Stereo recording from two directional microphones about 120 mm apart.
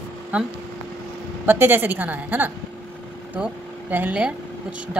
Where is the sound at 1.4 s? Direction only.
20° right (ahead or behind).